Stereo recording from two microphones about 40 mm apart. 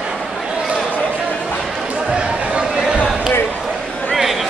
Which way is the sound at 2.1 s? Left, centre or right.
Right.